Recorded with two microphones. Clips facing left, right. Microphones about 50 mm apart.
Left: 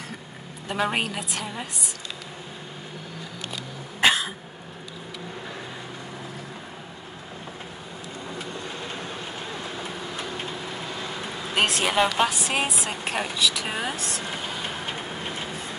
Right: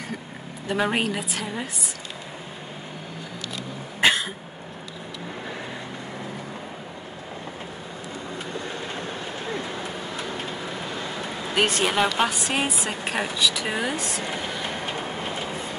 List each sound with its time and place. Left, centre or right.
0.7 s speech: centre
4.0 s cat: centre
11.5 s speech: centre